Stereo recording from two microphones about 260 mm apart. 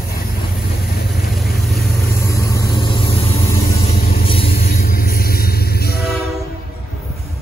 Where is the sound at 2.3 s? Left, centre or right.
Centre; by 6.1 s left.